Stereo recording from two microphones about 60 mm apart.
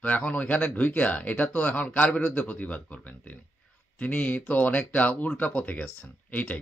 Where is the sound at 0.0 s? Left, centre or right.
Left.